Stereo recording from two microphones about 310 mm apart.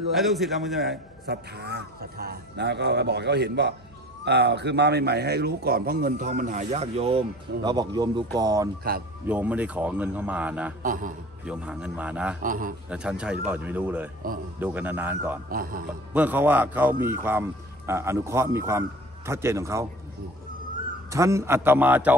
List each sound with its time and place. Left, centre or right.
0.1 s speech: centre
1.2 s a man's voice: right; by 10.7 s centre
10.8 s a man's voice: right
11.4 s speech: centre
12.4 s a man's voice: right
12.9 s speech: centre
15.5 s a man's voice: right
16.1 s speech: centre
21.1 s speech: centre